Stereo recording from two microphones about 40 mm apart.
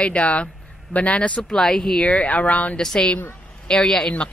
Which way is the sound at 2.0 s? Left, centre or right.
Left.